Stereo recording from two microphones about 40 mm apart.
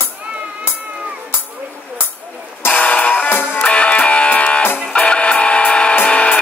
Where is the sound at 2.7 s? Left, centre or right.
Left.